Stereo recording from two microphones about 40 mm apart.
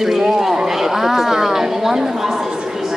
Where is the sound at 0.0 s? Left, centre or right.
Centre.